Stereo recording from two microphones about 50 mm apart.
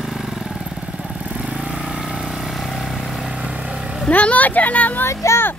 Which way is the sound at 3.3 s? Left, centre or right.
Right.